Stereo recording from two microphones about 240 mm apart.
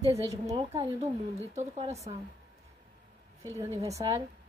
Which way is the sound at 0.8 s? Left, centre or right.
Right.